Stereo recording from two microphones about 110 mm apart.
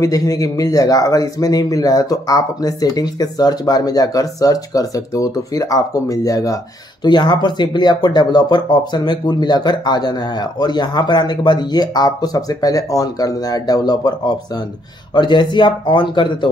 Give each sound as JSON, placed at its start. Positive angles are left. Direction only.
{"t": 0.0, "sound": "speech", "side_deg": 35}